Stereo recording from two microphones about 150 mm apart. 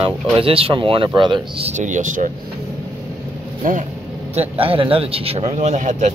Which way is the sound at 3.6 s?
65° right (ahead or behind).